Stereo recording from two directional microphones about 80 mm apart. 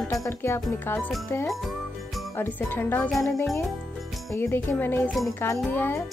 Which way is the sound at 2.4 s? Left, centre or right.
Left.